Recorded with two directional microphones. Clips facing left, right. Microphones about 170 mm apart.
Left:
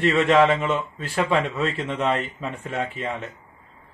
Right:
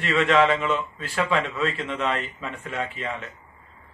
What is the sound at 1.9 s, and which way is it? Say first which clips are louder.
A man's voice: left 3 dB; 35° left (ahead or behind).